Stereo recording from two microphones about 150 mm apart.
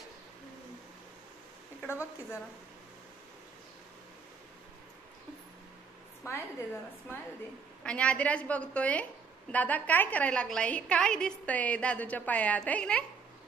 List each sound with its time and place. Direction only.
1.8 s a sound: 15° left (ahead or behind)
6.2 s a woman's voice: 20° left (ahead or behind)
7.8 s a woman's voice: 5° left (ahead or behind)